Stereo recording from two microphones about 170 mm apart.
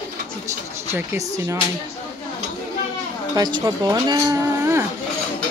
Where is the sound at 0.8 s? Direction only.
15° right (ahead or behind).